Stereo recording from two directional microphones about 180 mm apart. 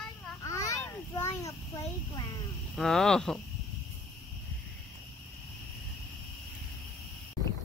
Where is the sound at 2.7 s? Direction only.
Centre (ahead or behind).